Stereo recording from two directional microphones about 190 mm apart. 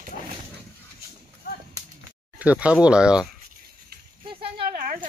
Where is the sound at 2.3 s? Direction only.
5° right (ahead or behind).